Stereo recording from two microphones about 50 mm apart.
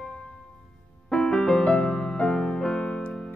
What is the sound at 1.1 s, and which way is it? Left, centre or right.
Music, centre.